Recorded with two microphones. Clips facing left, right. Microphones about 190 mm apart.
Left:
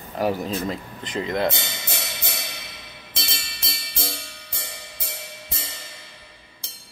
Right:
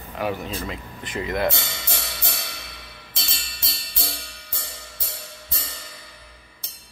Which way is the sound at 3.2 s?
25° left (ahead or behind).